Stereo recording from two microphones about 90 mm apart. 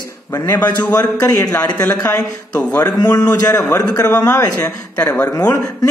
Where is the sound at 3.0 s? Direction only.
45° left (ahead or behind).